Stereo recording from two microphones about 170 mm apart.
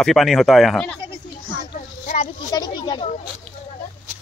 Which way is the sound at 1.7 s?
45° left (ahead or behind).